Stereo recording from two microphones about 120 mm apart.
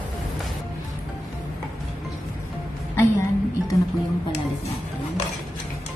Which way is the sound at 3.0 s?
25° left (ahead or behind).